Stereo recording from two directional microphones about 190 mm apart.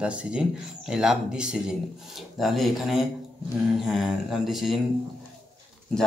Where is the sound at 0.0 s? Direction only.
5° right (ahead or behind).